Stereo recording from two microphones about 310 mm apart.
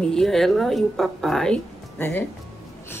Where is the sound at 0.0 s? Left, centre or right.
Centre.